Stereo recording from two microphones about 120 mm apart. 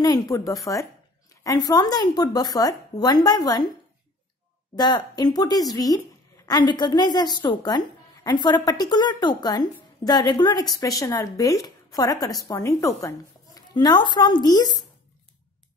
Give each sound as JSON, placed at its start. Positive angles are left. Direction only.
{"t": 0.0, "sound": "a woman's voice", "side_deg": 30}
{"t": 4.7, "sound": "a woman's voice", "side_deg": 35}
{"t": 13.6, "sound": "speech", "side_deg": 35}